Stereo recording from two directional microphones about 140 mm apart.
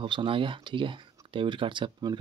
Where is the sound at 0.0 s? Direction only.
35° right (ahead or behind).